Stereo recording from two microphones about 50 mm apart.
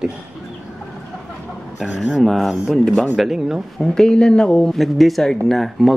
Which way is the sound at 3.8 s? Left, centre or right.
Centre.